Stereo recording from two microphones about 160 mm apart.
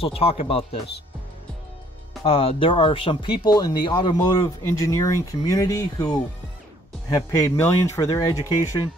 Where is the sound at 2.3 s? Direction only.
35° left (ahead or behind).